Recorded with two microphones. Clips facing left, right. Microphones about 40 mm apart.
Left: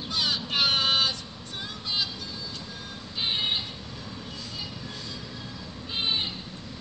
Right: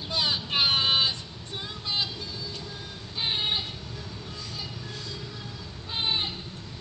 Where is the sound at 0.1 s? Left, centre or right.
Centre.